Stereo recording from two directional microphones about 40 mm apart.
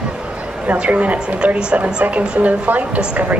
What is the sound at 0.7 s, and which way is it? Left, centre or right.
A woman's voice, right.